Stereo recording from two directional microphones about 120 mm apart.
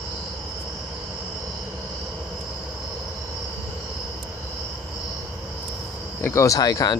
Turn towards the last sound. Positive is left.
turn(degrees=30)  # may be behind; listen again after turning